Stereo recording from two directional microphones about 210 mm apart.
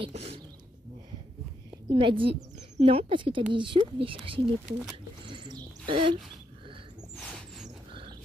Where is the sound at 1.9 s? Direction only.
25° right (ahead or behind).